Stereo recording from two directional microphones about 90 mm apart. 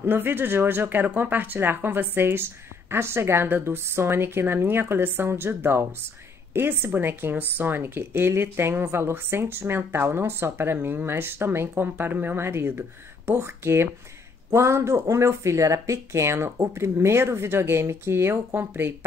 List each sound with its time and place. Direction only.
0.0 s speech: 25° right (ahead or behind)